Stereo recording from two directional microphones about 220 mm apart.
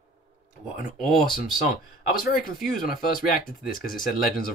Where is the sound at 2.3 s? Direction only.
Centre (ahead or behind).